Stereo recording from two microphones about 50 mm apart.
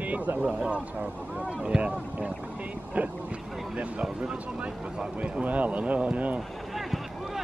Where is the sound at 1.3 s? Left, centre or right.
Centre.